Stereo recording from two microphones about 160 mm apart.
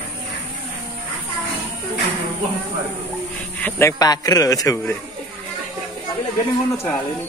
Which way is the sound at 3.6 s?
15° left (ahead or behind).